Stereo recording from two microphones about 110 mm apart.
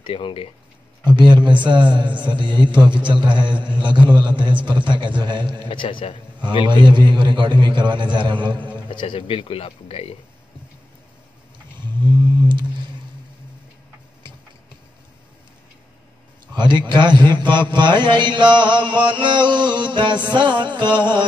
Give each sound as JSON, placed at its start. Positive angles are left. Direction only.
{"t": 0.0, "sound": "speech", "side_deg": 55}
{"t": 1.0, "sound": "mantra", "side_deg": -45}
{"t": 5.7, "sound": "a man's voice", "side_deg": 50}
{"t": 6.7, "sound": "mantra", "side_deg": -45}
{"t": 8.9, "sound": "speech", "side_deg": 50}
{"t": 12.2, "sound": "whale vocalization", "side_deg": -45}
{"t": 16.5, "sound": "mantra", "side_deg": -45}